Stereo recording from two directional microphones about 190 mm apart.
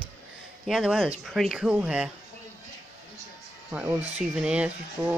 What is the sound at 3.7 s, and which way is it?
Speech, 10° right (ahead or behind).